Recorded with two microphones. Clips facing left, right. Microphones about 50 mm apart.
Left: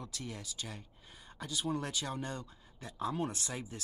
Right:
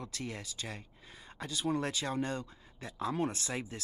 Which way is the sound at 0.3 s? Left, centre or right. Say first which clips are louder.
Right 2 dB; right.